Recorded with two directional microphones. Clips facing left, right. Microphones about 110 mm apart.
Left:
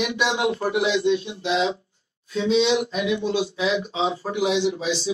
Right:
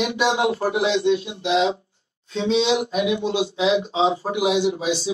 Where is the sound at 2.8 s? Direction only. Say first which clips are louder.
Right 2 dB; 20° right (ahead or behind).